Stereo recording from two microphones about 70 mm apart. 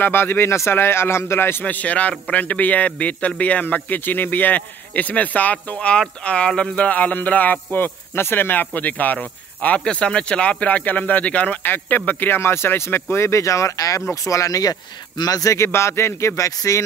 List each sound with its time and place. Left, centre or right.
0.0 s speech: left
1.6 s a man's voice: left
15.5 s speech: left